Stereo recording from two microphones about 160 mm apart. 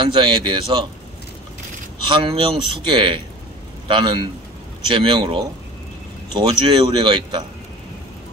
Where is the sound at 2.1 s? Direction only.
35° right (ahead or behind).